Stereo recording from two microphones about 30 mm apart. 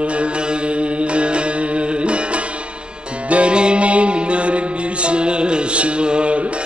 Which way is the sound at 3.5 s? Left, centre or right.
Right.